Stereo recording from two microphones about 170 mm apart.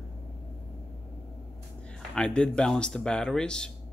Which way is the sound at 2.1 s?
5° left (ahead or behind).